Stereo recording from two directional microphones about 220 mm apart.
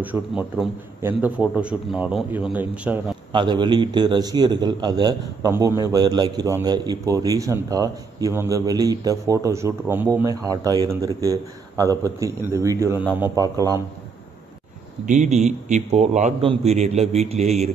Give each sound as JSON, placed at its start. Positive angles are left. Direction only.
{"t": 0.0, "sound": "a man's voice", "side_deg": -5}
{"t": 3.3, "sound": "a man's voice", "side_deg": -20}
{"t": 15.0, "sound": "a man's voice", "side_deg": -30}